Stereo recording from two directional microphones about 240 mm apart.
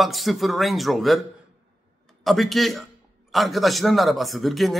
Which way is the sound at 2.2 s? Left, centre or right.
Centre.